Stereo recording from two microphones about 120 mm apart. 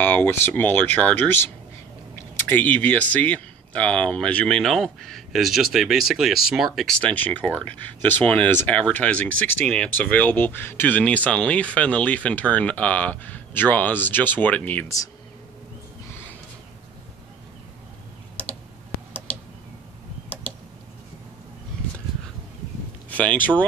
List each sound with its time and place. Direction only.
0.0 s speech: 15° left (ahead or behind)
23.0 s speech: 10° left (ahead or behind)